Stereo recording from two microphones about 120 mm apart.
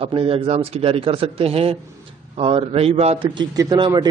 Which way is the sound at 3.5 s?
30° right (ahead or behind).